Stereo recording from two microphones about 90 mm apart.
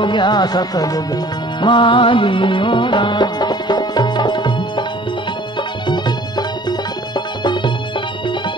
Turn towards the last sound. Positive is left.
turn(degrees=55)  # may be behind; listen again after turning